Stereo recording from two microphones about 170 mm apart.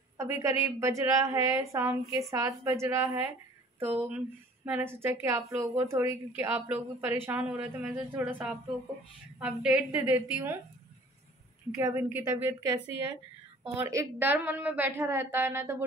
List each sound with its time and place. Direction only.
0.2 s a woman's voice: 15° right (ahead or behind)
10.1 s speech: 15° right (ahead or behind)
11.7 s speech: 15° right (ahead or behind)